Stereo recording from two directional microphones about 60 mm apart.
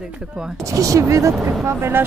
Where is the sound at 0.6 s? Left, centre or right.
Right.